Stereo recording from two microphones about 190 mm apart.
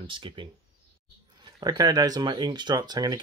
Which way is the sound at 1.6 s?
20° right (ahead or behind).